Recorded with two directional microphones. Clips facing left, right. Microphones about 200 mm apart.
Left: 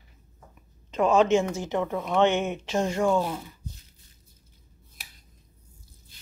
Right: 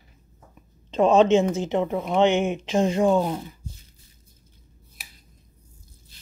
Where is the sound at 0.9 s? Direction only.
25° right (ahead or behind).